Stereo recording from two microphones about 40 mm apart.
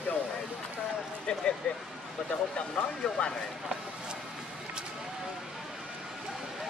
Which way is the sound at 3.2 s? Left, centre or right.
Left.